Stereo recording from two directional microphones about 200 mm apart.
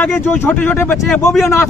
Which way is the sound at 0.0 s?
10° left (ahead or behind).